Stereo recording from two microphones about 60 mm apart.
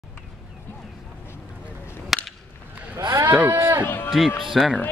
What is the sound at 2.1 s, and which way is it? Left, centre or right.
Whip, centre.